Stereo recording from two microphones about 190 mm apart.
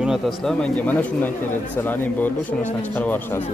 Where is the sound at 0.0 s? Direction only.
Centre (ahead or behind).